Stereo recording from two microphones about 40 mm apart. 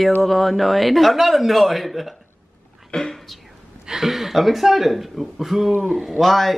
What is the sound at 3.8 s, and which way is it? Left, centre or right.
Speech, centre.